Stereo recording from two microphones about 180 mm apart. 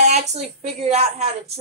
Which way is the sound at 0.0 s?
40° right (ahead or behind).